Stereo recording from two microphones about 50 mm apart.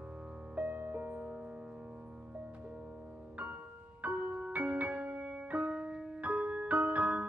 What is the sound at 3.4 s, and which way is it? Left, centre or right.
Music, right.